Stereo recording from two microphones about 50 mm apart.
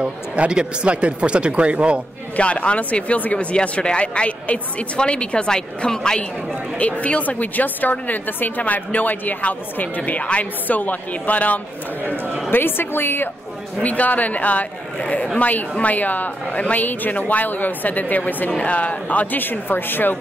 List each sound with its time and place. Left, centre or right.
0.0 s speech: centre
2.3 s a woman's voice: left
12.4 s a woman's voice: left
13.8 s a woman's voice: left